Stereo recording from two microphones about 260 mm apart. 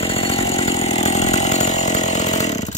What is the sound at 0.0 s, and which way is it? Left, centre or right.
Chainsaw, left.